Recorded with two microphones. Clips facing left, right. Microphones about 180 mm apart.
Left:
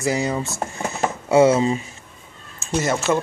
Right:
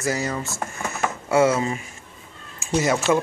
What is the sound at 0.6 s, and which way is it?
Speech, 25° left (ahead or behind).